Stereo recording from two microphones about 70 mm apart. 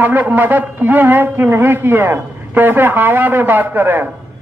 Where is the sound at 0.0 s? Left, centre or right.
Right.